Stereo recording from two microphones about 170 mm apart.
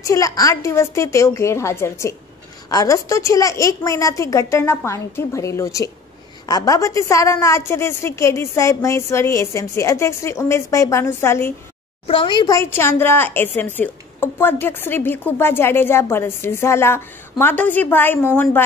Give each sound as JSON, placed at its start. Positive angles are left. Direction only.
{"t": 0.0, "sound": "a woman's voice", "side_deg": 20}
{"t": 12.1, "sound": "a woman's voice", "side_deg": 30}